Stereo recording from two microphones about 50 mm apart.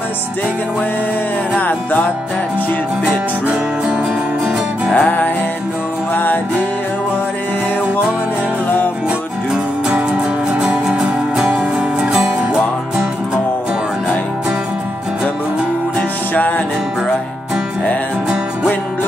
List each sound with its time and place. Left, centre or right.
1.6 s music: left
4.9 s music: left
9.8 s music: right
16.3 s music: left